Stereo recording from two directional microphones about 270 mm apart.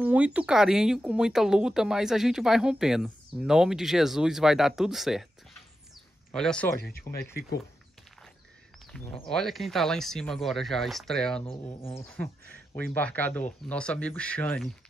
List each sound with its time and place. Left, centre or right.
0.0 s speech: centre
6.3 s speech: centre
7.1 s speech: centre
8.9 s speech: centre
11.4 s speech: centre
11.9 s speech: centre